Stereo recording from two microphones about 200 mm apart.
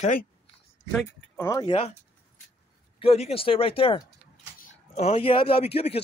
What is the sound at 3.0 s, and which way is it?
Speech, 30° left (ahead or behind).